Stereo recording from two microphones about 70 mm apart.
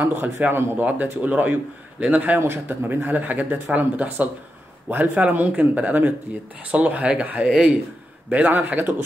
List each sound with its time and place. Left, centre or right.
0.0 s a man's voice: right; by 2.4 s centre
2.4 s a man's voice: right